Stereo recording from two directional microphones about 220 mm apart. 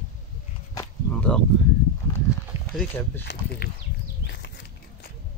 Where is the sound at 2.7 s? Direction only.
10° left (ahead or behind).